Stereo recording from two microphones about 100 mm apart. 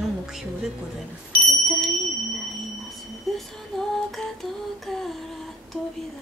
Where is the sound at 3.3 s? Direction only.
Centre (ahead or behind).